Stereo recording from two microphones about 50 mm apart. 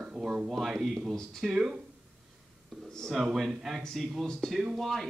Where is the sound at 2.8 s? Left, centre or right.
Centre.